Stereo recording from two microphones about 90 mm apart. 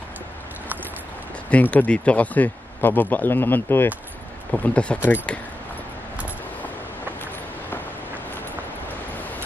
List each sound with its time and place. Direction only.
1.5 s speech: 15° left (ahead or behind)